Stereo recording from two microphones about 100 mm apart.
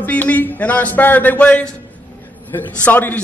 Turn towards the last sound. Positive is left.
turn(degrees=20)  # may be behind; listen again after turning